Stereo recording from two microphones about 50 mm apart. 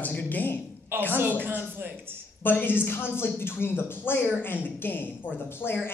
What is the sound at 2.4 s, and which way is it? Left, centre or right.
A man's voice, left.